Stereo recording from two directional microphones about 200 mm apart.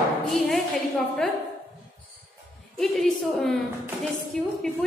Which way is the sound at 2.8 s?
Centre (ahead or behind).